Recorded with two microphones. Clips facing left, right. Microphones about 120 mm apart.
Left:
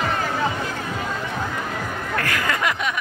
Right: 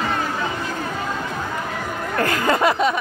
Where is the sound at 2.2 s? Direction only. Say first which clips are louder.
Right 6 dB; 30° right (ahead or behind).